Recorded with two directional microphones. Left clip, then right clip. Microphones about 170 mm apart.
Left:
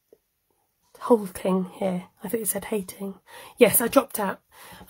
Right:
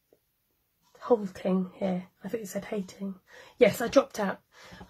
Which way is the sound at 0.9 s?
40° left (ahead or behind).